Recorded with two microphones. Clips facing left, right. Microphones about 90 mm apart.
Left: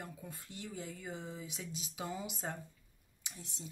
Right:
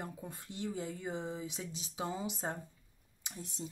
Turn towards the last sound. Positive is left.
turn(degrees=-40)  # may be behind; listen again after turning